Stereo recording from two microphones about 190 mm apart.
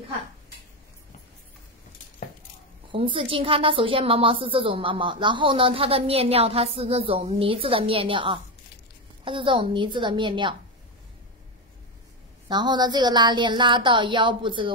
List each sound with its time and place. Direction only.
2.9 s a woman's voice: 30° right (ahead or behind)
12.4 s a woman's voice: 20° right (ahead or behind)